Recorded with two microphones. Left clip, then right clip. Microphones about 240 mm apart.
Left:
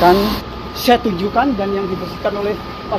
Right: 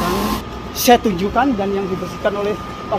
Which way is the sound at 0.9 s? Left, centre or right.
Right.